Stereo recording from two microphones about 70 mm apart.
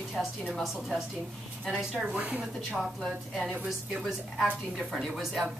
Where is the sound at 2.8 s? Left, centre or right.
Centre.